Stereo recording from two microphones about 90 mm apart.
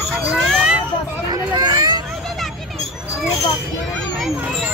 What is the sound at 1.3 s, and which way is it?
Hubbub, 50° right (ahead or behind).